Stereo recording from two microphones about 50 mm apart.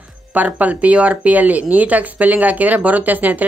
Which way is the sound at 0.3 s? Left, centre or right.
Right.